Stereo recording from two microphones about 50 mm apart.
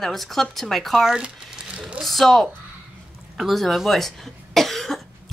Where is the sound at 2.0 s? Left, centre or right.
Centre.